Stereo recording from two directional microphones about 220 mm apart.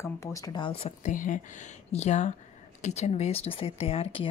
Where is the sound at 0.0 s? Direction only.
15° left (ahead or behind).